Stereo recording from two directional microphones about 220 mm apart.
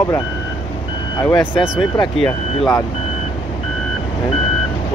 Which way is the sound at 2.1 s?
Centre (ahead or behind).